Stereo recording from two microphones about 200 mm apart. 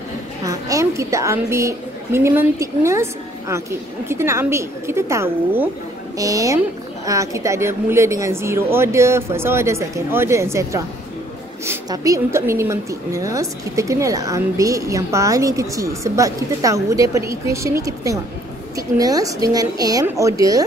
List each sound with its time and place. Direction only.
0.5 s a woman's voice: 15° right (ahead or behind)